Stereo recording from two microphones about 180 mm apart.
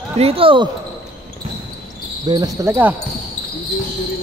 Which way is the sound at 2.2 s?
20° right (ahead or behind).